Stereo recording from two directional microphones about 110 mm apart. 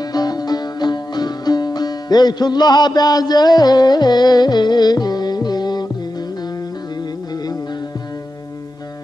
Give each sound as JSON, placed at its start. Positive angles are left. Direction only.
{"t": 0.0, "sound": "music", "side_deg": 35}